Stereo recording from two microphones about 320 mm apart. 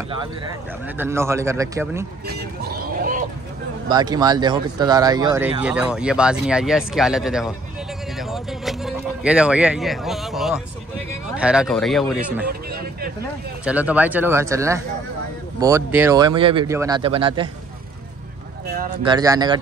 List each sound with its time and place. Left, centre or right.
0.8 s speech: centre
3.0 s a sound: right
3.9 s speech: centre
12.4 s a sound: right
13.7 s speech: centre
19.0 s speech: centre